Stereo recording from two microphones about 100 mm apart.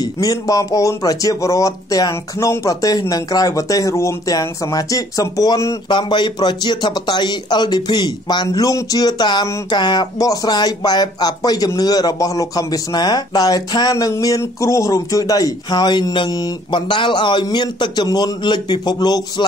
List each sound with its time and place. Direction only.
0.0 s speech: 35° left (ahead or behind)
5.9 s speech: 50° left (ahead or behind)